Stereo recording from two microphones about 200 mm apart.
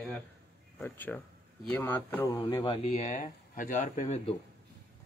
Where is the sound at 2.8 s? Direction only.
35° left (ahead or behind).